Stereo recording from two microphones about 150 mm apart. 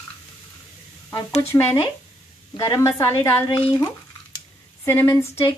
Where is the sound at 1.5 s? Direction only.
15° left (ahead or behind).